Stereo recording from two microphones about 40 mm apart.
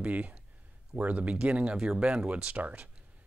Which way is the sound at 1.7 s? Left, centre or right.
Right.